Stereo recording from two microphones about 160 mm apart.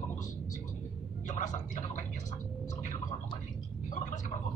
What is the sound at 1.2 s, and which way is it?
Speech, 50° left (ahead or behind).